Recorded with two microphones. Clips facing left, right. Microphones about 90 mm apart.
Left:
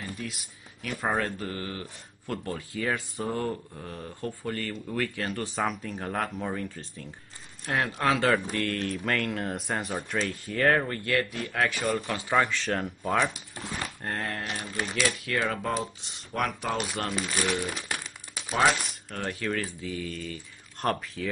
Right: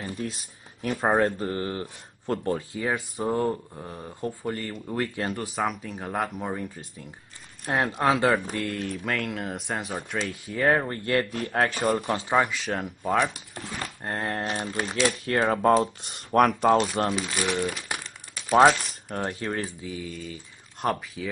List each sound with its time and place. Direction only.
0.0 s speech: 35° right (ahead or behind)
5.4 s speech: 5° right (ahead or behind)
10.9 s speech: 30° right (ahead or behind)
12.3 s speech: 10° right (ahead or behind)
14.0 s speech: 25° right (ahead or behind)
15.3 s speech: 35° right (ahead or behind)
15.7 s speech: 55° right (ahead or behind)
16.6 s speech: 40° right (ahead or behind)
17.1 s speech: 5° right (ahead or behind)
19.0 s speech: 30° right (ahead or behind)
19.8 s speech: 15° right (ahead or behind)